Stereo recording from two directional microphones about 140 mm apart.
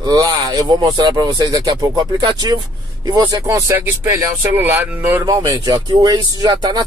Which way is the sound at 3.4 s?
20° right (ahead or behind).